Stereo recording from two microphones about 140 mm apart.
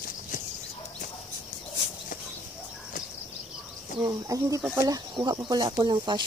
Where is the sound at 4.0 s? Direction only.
25° right (ahead or behind).